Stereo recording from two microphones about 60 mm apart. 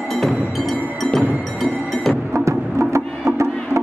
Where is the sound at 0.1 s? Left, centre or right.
Centre.